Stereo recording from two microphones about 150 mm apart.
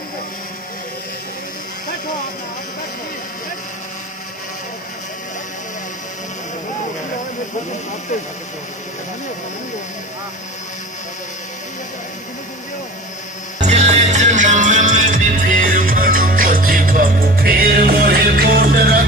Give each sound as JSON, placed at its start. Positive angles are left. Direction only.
{"t": 13.6, "sound": "music", "side_deg": -50}